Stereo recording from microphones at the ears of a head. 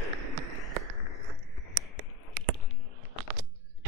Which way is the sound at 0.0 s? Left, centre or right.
Right.